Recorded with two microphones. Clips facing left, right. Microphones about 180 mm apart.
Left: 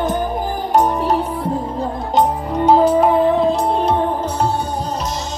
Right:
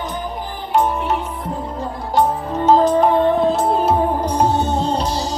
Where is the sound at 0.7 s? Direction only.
40° left (ahead or behind).